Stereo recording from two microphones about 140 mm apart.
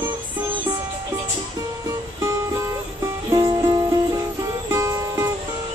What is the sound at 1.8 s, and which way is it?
Music, 20° right (ahead or behind).